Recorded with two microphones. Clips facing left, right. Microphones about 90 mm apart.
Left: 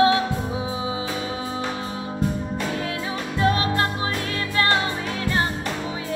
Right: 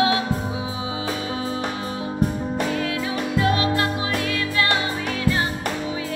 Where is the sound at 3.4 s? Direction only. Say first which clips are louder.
Even; 35° left (ahead or behind).